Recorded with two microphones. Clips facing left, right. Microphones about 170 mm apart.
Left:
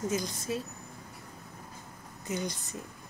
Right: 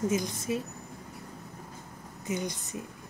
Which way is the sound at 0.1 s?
20° right (ahead or behind).